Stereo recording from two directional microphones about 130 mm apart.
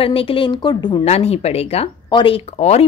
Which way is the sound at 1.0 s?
55° left (ahead or behind).